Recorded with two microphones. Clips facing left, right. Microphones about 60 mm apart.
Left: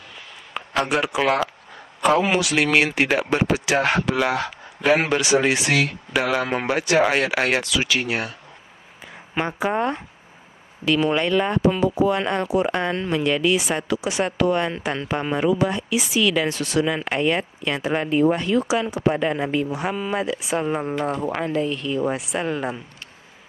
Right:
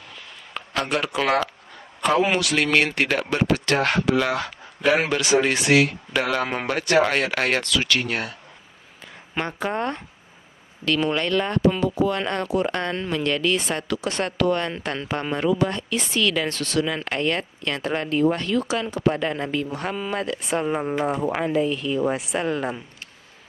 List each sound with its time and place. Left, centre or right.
0.6 s speech: centre